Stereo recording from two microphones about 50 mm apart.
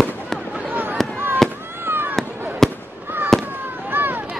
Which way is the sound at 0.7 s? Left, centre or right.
Right.